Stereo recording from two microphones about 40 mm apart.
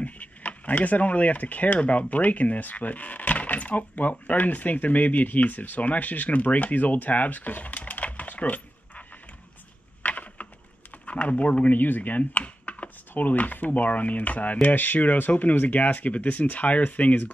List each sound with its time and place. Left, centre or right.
0.0 s speech: left
10.0 s typing: left
11.1 s speech: left